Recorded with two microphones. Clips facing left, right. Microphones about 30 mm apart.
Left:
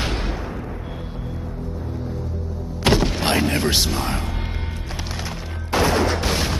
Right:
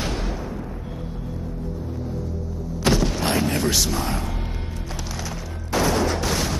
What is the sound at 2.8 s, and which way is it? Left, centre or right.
Music, left.